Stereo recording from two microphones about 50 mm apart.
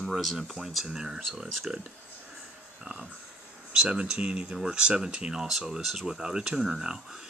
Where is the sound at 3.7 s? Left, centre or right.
Centre.